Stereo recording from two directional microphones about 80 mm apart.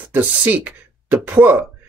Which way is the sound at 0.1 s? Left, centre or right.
Right.